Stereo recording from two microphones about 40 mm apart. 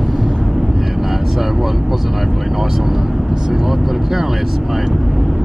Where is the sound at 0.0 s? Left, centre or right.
Centre.